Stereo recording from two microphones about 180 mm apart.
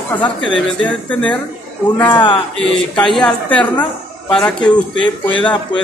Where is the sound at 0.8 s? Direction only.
5° left (ahead or behind).